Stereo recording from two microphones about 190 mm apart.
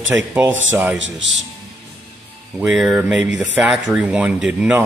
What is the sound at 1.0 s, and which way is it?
Speech, 75° right (ahead or behind).